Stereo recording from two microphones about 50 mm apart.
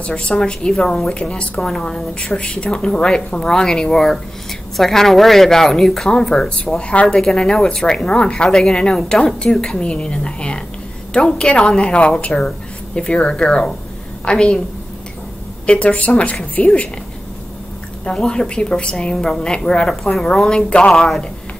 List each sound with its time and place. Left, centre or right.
0.0 s a woman's voice: centre
7.1 s a woman's voice: centre
15.6 s a woman's voice: left
18.0 s a woman's voice: centre